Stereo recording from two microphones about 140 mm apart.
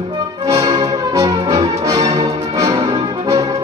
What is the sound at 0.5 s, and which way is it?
Music, 30° right (ahead or behind).